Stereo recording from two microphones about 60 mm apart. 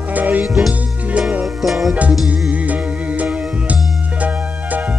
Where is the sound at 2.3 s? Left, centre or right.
Right.